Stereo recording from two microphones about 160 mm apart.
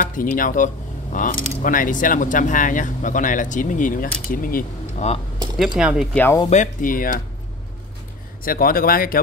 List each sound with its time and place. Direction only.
0.1 s speech: 60° left (ahead or behind)
5.6 s speech: 5° right (ahead or behind)
6.1 s speech: 15° left (ahead or behind)
6.5 s speech: 55° left (ahead or behind)
8.5 s speech: 65° left (ahead or behind)